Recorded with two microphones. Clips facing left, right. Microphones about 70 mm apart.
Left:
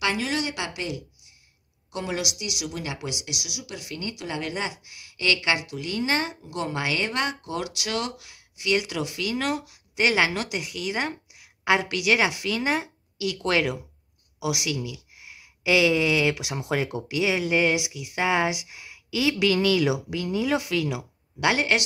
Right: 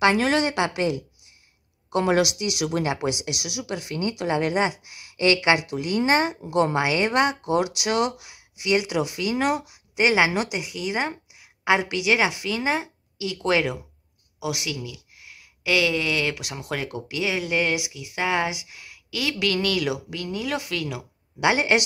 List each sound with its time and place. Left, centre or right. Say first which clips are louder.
0.0 s a woman's voice: right 7 dB; right
1.9 s speech: right 9 dB; right
2.9 s speech: right 7 dB; right
6.8 s speech: right 6 dB; right
11.3 s a sound: right 1 dB; centre
12.0 s speech: right 1 dB; centre
15.1 s speech: even; centre
21.4 s speech: right 2 dB; centre